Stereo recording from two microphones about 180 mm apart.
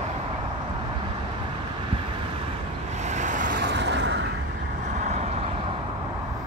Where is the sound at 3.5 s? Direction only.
75° right (ahead or behind).